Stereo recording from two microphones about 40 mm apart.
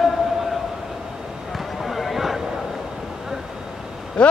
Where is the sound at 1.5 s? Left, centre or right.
Centre.